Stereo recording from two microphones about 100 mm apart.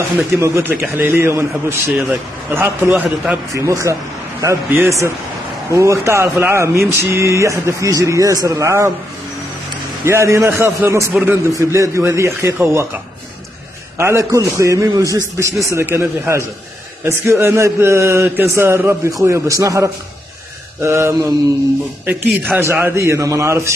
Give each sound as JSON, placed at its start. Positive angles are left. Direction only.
{"t": 0.3, "sound": "speech", "side_deg": -25}
{"t": 1.9, "sound": "speech", "side_deg": -5}
{"t": 2.5, "sound": "speech", "side_deg": -25}
{"t": 3.5, "sound": "a man's voice", "side_deg": -30}
{"t": 10.0, "sound": "speech", "side_deg": -30}
{"t": 13.9, "sound": "a man's voice", "side_deg": -30}
{"t": 22.0, "sound": "speech", "side_deg": -20}